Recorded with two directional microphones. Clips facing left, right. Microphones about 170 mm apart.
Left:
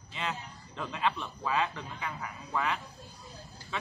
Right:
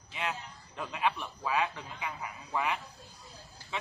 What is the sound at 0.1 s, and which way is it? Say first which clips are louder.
Speech: even; 10° right (ahead or behind).